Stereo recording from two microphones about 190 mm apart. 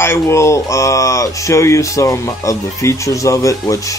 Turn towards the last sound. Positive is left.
turn(degrees=15)  # may be behind; listen again after turning